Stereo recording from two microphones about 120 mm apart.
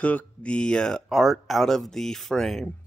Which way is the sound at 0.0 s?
10° left (ahead or behind).